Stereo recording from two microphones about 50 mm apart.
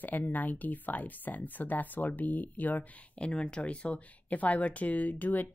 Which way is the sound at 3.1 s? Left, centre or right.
Centre.